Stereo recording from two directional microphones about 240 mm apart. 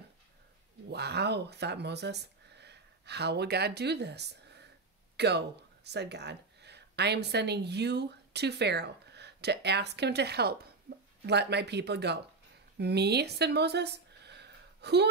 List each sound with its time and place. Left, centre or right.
0.8 s speech: right
5.1 s a sound: right
5.9 s a woman's voice: right